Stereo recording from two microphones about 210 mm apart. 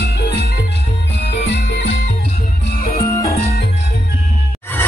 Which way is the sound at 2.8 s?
40° left (ahead or behind).